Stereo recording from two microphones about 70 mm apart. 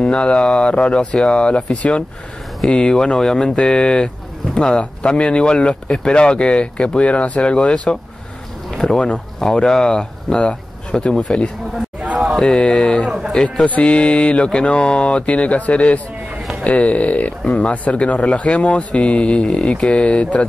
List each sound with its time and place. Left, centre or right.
0.0 s speech: centre
12.2 s speech: centre
13.7 s speech: centre